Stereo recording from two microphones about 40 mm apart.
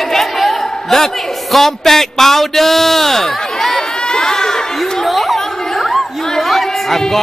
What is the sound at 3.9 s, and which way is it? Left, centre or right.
Baby cry, centre.